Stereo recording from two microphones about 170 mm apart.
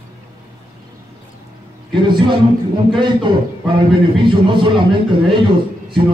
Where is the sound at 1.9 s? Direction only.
30° right (ahead or behind).